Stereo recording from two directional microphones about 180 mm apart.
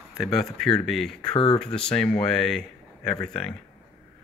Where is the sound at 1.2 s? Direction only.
30° left (ahead or behind).